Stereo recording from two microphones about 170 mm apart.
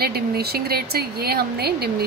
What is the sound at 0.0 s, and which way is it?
A woman's voice, 65° right (ahead or behind).